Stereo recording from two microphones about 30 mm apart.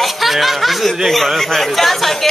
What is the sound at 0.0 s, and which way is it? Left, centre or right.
Speech, centre.